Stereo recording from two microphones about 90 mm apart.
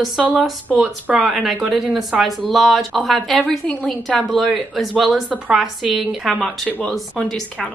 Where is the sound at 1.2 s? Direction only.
Centre (ahead or behind).